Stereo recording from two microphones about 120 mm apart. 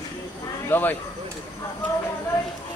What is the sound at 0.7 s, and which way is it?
Speech, 15° left (ahead or behind).